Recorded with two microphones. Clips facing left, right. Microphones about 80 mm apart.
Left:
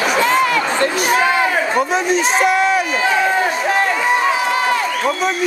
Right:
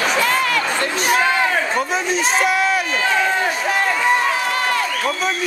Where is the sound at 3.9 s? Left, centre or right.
Centre.